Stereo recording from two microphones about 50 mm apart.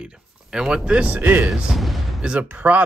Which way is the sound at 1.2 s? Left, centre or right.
Right.